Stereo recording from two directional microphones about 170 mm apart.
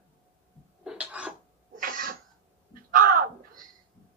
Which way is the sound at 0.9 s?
5° right (ahead or behind).